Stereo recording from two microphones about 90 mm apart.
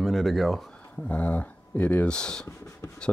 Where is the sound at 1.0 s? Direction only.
15° left (ahead or behind).